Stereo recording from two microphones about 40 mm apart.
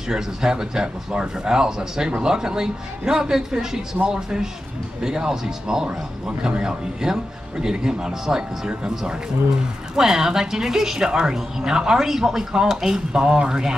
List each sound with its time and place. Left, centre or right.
0.1 s speech: centre